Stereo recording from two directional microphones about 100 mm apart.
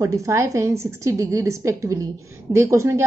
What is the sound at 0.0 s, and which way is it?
A woman's voice, 30° right (ahead or behind).